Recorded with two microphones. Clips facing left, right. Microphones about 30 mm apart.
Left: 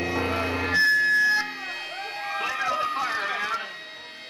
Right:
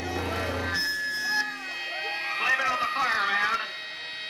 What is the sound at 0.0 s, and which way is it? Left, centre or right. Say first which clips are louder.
Music: left 4 dB; left.